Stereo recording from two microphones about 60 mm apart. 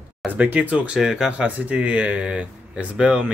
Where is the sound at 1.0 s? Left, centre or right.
Centre.